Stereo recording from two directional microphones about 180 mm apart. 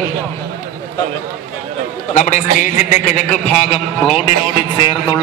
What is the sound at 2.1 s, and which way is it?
A man's voice, 45° left (ahead or behind).